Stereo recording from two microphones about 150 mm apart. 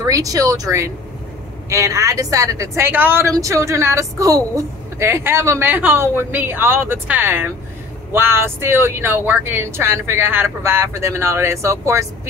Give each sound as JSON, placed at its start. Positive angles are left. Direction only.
{"t": 0.0, "sound": "a woman's voice", "side_deg": -25}